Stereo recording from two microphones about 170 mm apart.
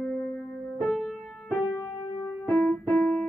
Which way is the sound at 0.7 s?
Centre (ahead or behind).